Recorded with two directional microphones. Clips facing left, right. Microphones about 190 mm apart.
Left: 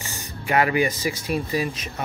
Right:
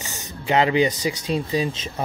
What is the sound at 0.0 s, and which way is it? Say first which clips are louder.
Speech: right 1 dB; 20° right (ahead or behind).